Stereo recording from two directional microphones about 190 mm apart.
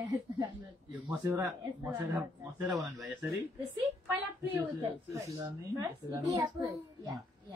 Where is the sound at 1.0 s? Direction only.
15° right (ahead or behind).